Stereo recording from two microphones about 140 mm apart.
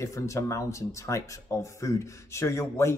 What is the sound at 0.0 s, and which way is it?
Speech, 20° left (ahead or behind).